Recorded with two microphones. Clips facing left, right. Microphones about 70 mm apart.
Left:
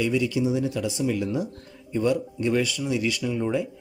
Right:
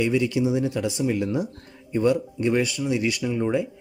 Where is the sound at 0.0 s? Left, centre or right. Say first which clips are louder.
Right 2 dB; right; by 3.6 s centre.